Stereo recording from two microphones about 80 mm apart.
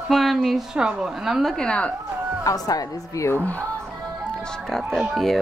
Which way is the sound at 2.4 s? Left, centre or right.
Left.